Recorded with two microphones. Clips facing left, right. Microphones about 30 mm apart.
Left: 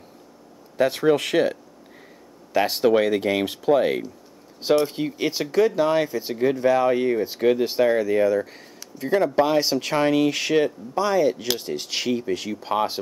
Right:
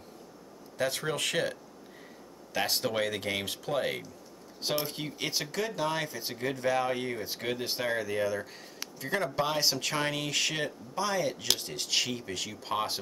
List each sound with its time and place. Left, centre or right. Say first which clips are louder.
0.7 s speech: left 12 dB; left
2.7 s speech: left 13 dB; centre